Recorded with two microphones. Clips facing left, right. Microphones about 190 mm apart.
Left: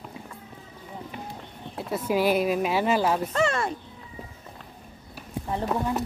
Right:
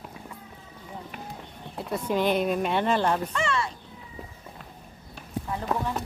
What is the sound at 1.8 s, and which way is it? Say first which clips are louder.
Speech: left 2 dB; 5° left (ahead or behind).